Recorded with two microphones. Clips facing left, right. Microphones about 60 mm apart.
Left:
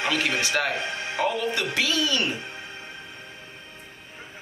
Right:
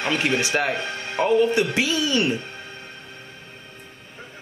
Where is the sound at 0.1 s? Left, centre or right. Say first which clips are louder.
Right 5 dB; right.